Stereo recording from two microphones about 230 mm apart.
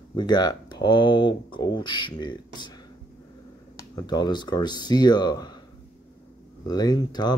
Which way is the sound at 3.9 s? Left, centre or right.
Centre.